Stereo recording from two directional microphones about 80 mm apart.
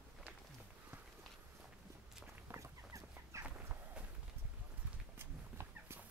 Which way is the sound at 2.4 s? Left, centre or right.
Right.